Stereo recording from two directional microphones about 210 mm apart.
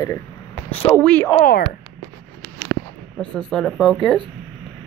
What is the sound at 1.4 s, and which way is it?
Speech, 45° left (ahead or behind).